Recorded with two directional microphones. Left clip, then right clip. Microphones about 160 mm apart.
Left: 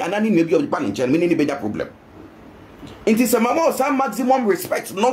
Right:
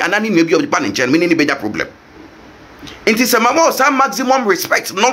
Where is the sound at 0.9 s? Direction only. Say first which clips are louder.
Right 5 dB; 40° right (ahead or behind).